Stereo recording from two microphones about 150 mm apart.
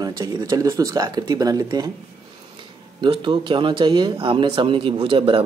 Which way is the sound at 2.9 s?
35° right (ahead or behind).